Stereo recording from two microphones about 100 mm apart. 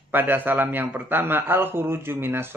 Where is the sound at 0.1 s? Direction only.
20° right (ahead or behind).